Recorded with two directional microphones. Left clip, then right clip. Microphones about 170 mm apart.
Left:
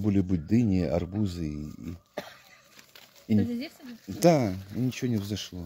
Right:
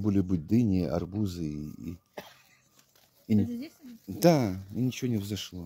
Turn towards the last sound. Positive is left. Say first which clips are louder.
# left 1 dB
turn(degrees=0)  # may be behind; listen again after turning